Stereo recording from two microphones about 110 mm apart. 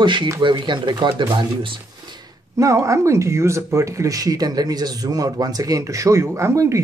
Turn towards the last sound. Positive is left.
turn(degrees=-25)  # may be behind; listen again after turning